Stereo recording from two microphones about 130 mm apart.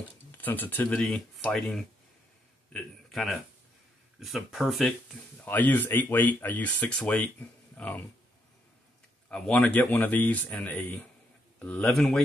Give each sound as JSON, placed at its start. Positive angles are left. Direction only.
{"t": 0.4, "sound": "a man's voice", "side_deg": 15}
{"t": 5.4, "sound": "speech", "side_deg": 15}
{"t": 9.3, "sound": "speech", "side_deg": 10}